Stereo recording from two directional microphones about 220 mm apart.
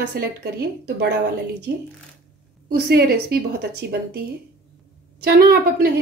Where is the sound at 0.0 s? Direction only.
50° right (ahead or behind).